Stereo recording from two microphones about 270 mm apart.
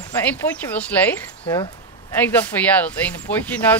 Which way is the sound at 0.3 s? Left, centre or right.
Centre.